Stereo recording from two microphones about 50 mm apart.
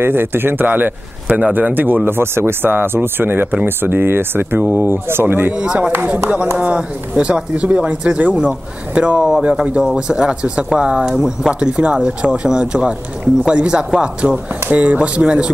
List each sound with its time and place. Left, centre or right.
0.0 s speech: right
1.2 s a man's voice: right
2.0 s speech: right
5.6 s a man's voice: right
14.7 s speech: right